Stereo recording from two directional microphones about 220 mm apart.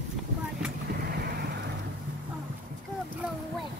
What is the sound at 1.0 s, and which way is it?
Boat, 45° right (ahead or behind).